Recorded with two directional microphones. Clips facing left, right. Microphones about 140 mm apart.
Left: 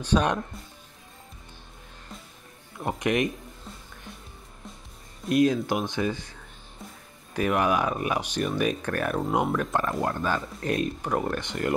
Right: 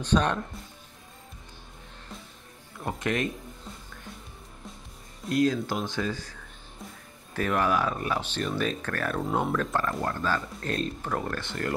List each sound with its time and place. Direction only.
0.0 s speech: 10° left (ahead or behind)
2.8 s speech: 20° left (ahead or behind)
5.3 s speech: 20° left (ahead or behind)
6.8 s music: centre (ahead or behind)
7.3 s speech: 15° left (ahead or behind)